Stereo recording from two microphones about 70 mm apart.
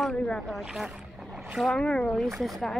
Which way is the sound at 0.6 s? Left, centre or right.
Centre.